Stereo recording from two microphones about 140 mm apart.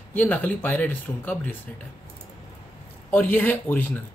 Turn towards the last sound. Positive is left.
turn(degrees=10)  # may be behind; listen again after turning